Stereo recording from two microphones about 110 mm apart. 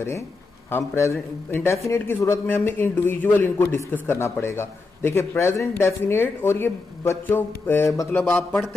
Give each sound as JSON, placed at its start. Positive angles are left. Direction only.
{"t": 0.7, "sound": "speech", "side_deg": 25}